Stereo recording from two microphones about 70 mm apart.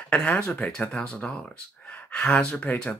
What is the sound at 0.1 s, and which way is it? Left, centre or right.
Speech, left.